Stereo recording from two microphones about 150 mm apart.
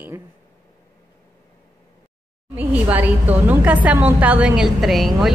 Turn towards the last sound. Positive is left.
turn(degrees=0)  # may be behind; listen again after turning